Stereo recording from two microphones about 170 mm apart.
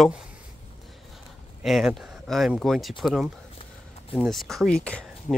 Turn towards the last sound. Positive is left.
turn(degrees=5)  # may be behind; listen again after turning